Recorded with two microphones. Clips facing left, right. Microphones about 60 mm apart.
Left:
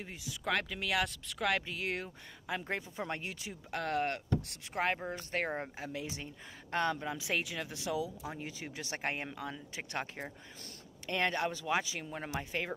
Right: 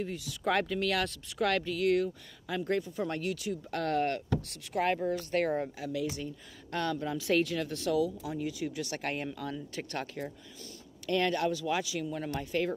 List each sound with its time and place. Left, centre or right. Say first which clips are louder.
0.0 s speech: right 8 dB; left
0.4 s speech: right 5 dB; centre
1.6 s speech: right 10 dB; left
3.7 s speech: right 3 dB; centre
4.5 s speech: right 6 dB; left
8.3 s speech: right 8 dB; left